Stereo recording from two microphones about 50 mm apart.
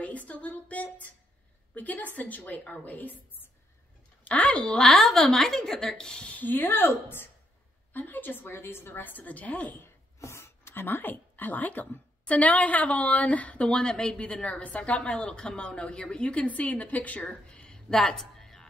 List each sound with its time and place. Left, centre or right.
0.0 s a woman's voice: left
4.8 s a woman's voice: centre
6.3 s speech: left
7.9 s a woman's voice: left
10.2 s a sound: left
10.7 s a woman's voice: left; by 18.7 s centre